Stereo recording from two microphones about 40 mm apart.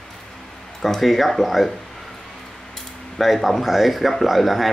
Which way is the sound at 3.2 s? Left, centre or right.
Centre.